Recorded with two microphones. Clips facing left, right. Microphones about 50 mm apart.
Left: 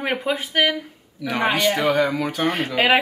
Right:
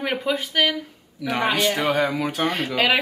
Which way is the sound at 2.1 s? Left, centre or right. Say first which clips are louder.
Left 1 dB; centre.